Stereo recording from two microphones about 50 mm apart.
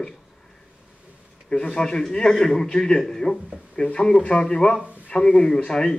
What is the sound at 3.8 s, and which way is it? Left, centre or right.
A man's voice, left.